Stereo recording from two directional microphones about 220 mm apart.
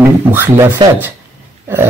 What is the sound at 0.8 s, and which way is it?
Speech, 20° right (ahead or behind).